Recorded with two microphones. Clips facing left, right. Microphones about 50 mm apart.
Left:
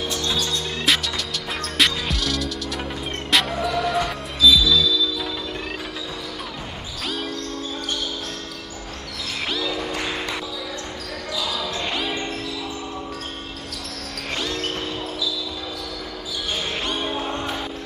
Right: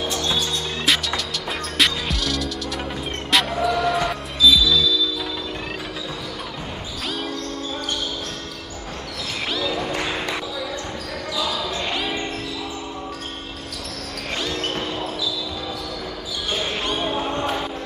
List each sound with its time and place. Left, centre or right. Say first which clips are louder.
0.1 s music: right 1 dB; centre
7.1 s music: even; centre
9.5 s train: right 1 dB; centre
9.8 s music: right 2 dB; centre
11.9 s music: even; centre
14.4 s basketball bounce: right 2 dB; centre
16.8 s music: right 2 dB; centre